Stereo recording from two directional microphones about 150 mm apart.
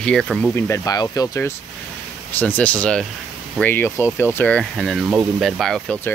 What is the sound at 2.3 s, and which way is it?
Speech, 10° left (ahead or behind).